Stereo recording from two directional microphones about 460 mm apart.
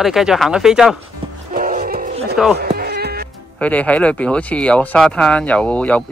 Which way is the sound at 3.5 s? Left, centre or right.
Centre.